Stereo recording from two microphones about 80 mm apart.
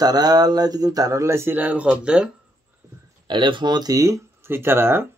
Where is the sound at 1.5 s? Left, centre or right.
Centre.